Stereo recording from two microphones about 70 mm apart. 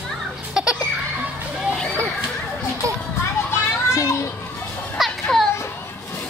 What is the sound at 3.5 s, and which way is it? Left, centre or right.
Children playing, left.